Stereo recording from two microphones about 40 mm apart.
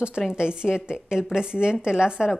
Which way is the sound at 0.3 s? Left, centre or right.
Right.